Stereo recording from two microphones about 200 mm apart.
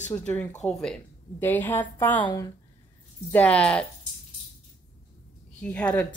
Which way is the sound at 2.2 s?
20° left (ahead or behind).